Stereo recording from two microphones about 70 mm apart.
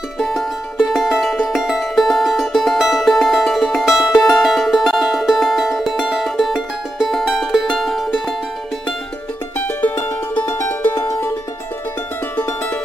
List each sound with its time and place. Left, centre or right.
0.2 s music: centre
11.0 s music: left